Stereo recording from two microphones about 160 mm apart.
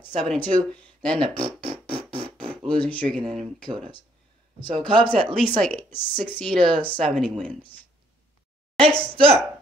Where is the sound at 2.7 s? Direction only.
10° left (ahead or behind).